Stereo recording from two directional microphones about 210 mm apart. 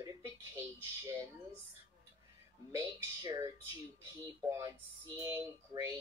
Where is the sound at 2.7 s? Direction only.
15° right (ahead or behind).